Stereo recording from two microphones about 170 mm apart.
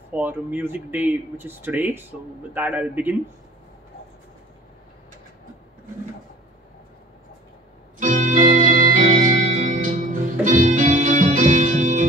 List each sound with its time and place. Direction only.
0.1 s speech: 10° right (ahead or behind)
8.0 s organ: 45° right (ahead or behind)